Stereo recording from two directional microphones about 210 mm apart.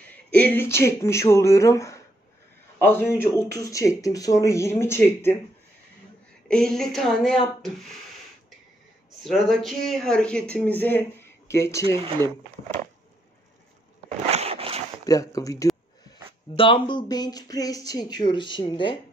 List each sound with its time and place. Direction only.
0.4 s speech: 10° left (ahead or behind)
6.5 s speech: centre (ahead or behind)
9.2 s speech: centre (ahead or behind)
14.0 s zipper: 30° right (ahead or behind)
15.0 s a sound: 15° left (ahead or behind)
16.5 s speech: 25° left (ahead or behind)